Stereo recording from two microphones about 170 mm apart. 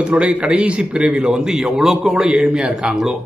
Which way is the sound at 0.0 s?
5° right (ahead or behind).